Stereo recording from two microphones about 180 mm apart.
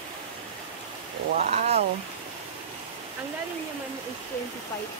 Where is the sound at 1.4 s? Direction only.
40° right (ahead or behind).